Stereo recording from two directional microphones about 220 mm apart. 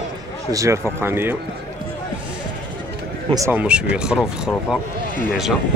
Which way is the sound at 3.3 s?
10° right (ahead or behind).